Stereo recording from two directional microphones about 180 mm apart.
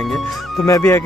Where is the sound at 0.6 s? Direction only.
15° left (ahead or behind).